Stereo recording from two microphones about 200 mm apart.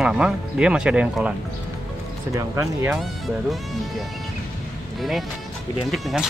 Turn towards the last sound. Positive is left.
turn(degrees=0)  # may be behind; listen again after turning